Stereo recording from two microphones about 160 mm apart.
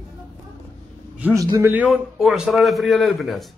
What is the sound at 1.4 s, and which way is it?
Speech, 20° right (ahead or behind).